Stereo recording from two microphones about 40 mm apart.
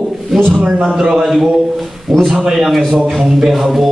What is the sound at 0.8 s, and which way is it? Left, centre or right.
Speech, centre.